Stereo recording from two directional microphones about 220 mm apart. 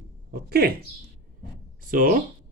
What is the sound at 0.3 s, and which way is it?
Speech, 45° right (ahead or behind).